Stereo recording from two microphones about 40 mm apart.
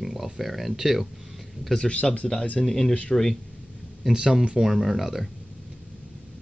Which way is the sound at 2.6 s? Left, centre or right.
Centre.